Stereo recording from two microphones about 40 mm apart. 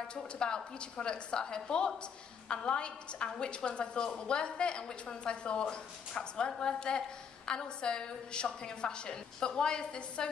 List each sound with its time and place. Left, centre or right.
0.1 s a woman's voice: left